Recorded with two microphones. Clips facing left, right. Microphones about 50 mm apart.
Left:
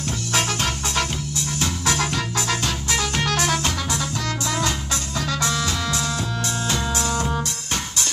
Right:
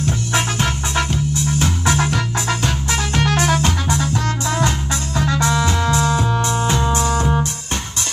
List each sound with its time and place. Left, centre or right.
0.0 s music: centre